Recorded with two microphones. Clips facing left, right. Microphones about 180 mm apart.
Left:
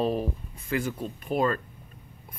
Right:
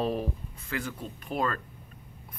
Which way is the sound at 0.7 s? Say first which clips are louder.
Left 6 dB; 15° left (ahead or behind).